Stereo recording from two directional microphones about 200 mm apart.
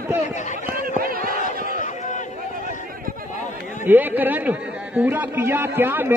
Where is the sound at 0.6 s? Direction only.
45° right (ahead or behind).